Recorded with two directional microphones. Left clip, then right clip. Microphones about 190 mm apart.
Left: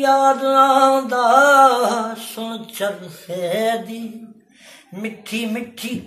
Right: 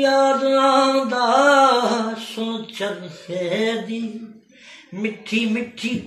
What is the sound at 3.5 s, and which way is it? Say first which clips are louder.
Music: left 2 dB; 25° left (ahead or behind).